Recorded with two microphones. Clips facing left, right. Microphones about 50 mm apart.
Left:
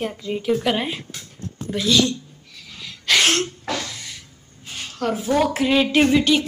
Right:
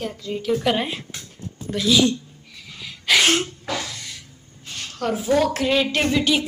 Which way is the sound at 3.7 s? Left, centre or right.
Centre.